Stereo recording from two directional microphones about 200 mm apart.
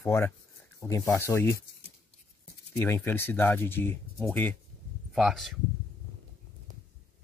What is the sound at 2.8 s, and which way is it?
Speech, 10° left (ahead or behind).